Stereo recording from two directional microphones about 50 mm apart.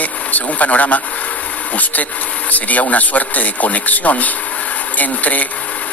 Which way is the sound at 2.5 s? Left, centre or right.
Left.